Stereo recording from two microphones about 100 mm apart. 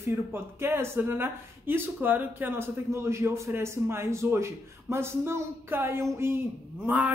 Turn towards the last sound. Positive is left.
turn(degrees=-15)  # may be behind; listen again after turning